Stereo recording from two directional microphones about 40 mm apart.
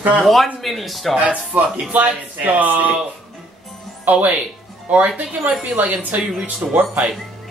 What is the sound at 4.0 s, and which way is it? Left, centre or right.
Speech, right.